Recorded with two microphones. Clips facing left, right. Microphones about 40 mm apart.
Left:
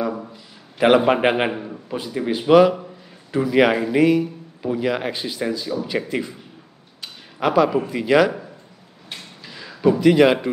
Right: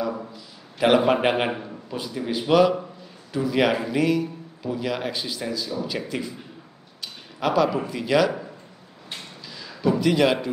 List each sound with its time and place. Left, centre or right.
0.3 s a man's voice: centre
1.9 s a man's voice: centre
7.3 s a man's voice: centre
9.5 s a sound: left
9.9 s a man's voice: centre